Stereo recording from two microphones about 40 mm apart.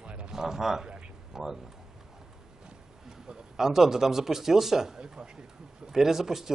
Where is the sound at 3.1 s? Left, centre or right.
Centre.